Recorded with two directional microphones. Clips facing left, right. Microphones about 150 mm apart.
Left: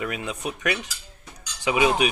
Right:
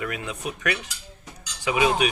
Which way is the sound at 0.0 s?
20° left (ahead or behind).